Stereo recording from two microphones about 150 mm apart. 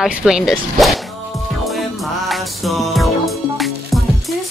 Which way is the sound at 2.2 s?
Centre (ahead or behind).